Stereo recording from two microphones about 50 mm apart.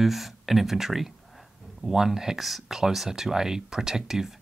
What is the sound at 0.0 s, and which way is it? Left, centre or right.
Speech, centre.